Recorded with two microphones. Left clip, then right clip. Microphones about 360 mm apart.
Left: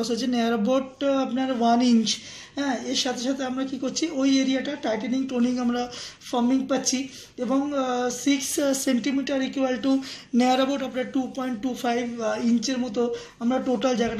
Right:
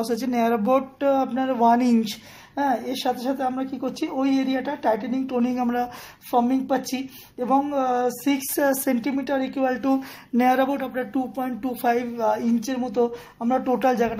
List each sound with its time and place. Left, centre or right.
0.0 s speech: centre